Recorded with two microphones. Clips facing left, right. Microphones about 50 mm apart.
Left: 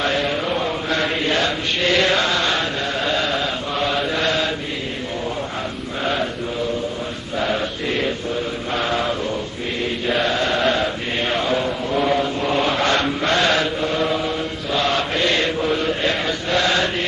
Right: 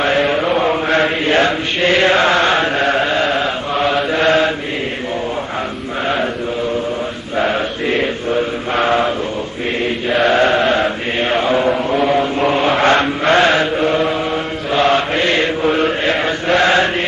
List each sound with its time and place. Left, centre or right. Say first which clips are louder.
0.0 s mantra: right 6 dB; right
1.0 s chant: right 6 dB; right
2.8 s chant: right 8 dB; right
3.1 s chant: right 5 dB; right
4.1 s mantra: right 7 dB; right
7.3 s mantra: right 5 dB; right
10.0 s chant: right 6 dB; centre
10.3 s chant: right 8 dB; right
10.6 s mantra: right 4 dB; right
12.0 s chant: right 2 dB; centre
12.4 s chant: right 6 dB; right
14.7 s mantra: right 7 dB; right
16.0 s chant: right 5 dB; right